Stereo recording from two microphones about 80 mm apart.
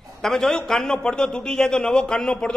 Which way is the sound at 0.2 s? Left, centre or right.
Centre.